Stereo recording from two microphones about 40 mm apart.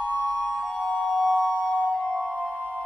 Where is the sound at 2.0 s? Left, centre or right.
Left.